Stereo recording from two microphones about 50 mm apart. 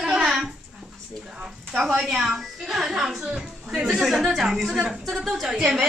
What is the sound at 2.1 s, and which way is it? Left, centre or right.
Speech, centre.